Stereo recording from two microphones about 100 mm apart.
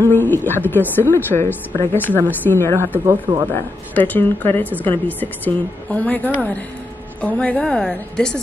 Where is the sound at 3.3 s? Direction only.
60° right (ahead or behind).